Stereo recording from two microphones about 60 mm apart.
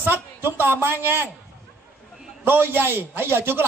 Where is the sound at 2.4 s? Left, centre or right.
Right.